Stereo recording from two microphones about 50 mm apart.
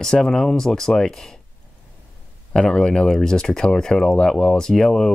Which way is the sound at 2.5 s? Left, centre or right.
Centre.